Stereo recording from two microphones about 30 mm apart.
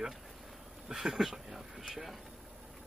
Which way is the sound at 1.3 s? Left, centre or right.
Centre.